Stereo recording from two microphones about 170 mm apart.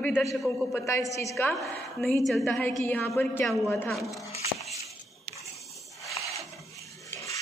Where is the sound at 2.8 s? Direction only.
15° left (ahead or behind).